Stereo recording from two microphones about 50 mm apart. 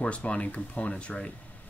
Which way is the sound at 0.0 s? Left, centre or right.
Left.